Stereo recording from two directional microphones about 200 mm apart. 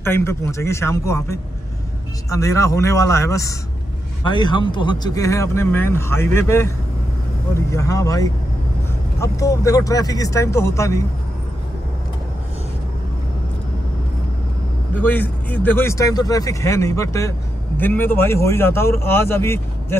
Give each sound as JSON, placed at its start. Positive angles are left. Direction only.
{"t": 0.0, "sound": "speech", "side_deg": 10}
{"t": 15.0, "sound": "speech", "side_deg": 10}